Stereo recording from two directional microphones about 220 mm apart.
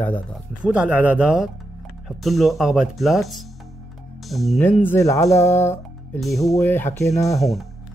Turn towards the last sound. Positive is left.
turn(degrees=0)  # may be behind; listen again after turning